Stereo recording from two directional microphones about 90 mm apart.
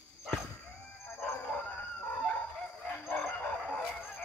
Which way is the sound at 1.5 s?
15° left (ahead or behind).